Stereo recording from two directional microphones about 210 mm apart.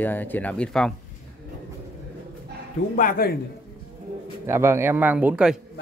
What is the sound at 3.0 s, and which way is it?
Speech, 45° left (ahead or behind).